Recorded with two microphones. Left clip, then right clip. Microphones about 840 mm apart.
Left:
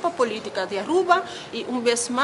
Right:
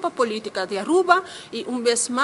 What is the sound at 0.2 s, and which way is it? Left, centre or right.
A woman's voice, right.